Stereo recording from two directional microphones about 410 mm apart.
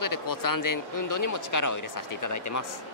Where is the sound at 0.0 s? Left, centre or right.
Left.